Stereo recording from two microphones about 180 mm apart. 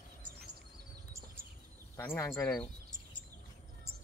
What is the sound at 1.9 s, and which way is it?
Speech, 15° left (ahead or behind).